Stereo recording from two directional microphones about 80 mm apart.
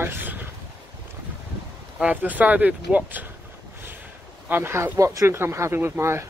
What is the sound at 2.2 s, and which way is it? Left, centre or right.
Speech, right.